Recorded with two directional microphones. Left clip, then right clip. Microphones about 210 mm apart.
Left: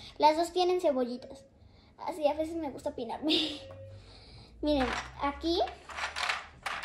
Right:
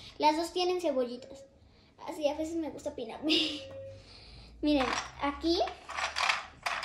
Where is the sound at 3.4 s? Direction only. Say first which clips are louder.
Right 1 dB; centre (ahead or behind).